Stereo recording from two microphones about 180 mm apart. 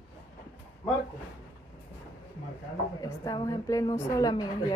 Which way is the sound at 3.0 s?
20° left (ahead or behind).